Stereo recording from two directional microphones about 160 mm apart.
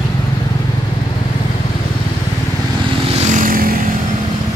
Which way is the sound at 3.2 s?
55° right (ahead or behind).